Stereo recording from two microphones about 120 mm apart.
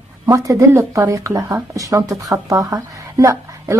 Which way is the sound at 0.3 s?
25° right (ahead or behind).